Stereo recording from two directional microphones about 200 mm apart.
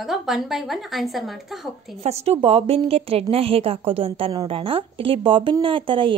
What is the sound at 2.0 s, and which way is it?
A woman's voice, 30° right (ahead or behind).